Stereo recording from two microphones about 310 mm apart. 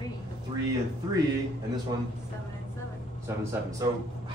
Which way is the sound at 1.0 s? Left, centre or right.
Centre.